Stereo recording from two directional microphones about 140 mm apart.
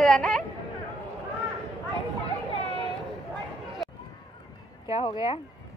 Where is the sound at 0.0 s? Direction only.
5° left (ahead or behind).